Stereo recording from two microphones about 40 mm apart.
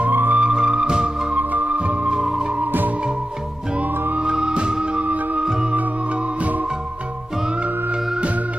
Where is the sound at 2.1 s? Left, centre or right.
Centre.